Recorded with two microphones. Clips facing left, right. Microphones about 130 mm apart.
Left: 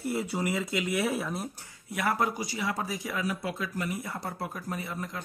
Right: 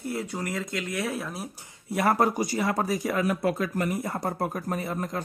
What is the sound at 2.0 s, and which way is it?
Speech, 40° right (ahead or behind).